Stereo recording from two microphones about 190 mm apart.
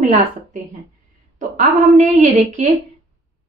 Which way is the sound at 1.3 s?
40° right (ahead or behind).